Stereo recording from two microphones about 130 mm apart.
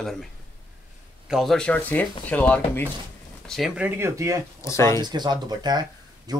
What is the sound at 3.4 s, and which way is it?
Speech, centre (ahead or behind).